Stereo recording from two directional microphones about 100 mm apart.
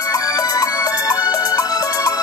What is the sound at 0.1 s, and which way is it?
Music, 35° left (ahead or behind).